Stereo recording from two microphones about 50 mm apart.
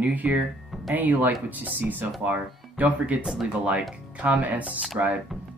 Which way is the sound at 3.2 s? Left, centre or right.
Centre.